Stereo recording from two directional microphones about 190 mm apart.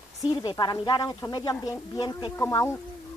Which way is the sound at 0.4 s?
25° left (ahead or behind).